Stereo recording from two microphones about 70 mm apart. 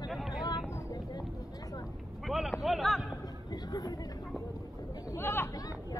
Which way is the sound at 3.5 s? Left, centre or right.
Left.